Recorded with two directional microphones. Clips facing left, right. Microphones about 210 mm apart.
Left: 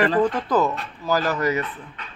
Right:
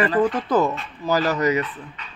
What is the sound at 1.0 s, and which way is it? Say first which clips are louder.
Speech: right 2 dB; 20° right (ahead or behind).